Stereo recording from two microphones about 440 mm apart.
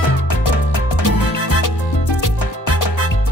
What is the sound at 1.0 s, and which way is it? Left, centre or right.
Music, left.